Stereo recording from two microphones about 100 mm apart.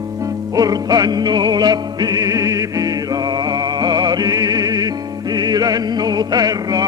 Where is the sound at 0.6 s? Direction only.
40° right (ahead or behind).